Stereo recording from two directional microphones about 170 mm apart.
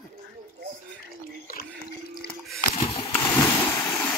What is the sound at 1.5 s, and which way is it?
Water, 65° left (ahead or behind).